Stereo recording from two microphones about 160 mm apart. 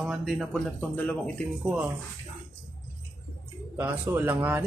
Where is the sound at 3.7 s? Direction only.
10° right (ahead or behind).